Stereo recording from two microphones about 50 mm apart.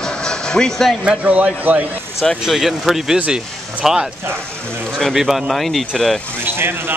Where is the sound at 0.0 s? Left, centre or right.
Centre.